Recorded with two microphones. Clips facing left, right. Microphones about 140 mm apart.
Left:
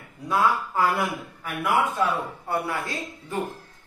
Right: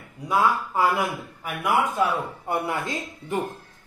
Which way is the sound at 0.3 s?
15° right (ahead or behind).